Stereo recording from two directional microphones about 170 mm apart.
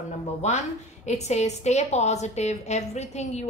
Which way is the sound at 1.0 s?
40° left (ahead or behind).